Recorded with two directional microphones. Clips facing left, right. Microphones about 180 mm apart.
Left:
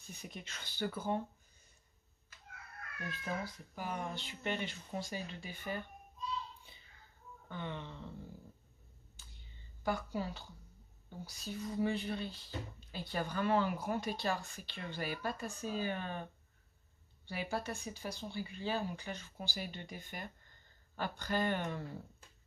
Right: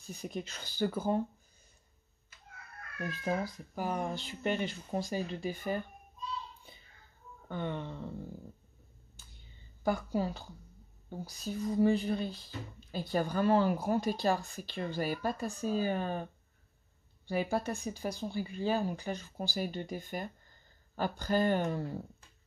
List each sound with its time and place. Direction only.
0.1 s speech: 35° right (ahead or behind)
3.0 s speech: 40° right (ahead or behind)
7.4 s speech: 50° right (ahead or behind)
9.8 s speech: 40° right (ahead or behind)
17.3 s speech: 45° right (ahead or behind)